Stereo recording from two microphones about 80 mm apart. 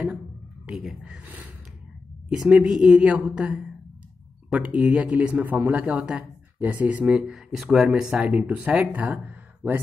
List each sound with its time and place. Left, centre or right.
0.7 s speech: centre
1.2 s gasp: centre
2.4 s speech: centre; by 9.8 s right